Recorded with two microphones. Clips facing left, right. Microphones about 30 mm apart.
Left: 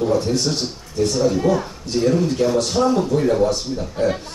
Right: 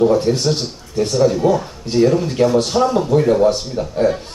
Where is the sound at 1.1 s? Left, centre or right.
Centre.